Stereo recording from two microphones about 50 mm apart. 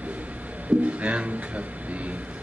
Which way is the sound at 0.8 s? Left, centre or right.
Right.